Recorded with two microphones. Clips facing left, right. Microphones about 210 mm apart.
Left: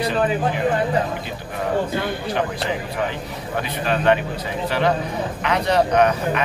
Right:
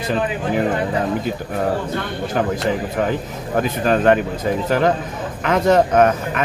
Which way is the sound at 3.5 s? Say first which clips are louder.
Right 6 dB; 45° right (ahead or behind).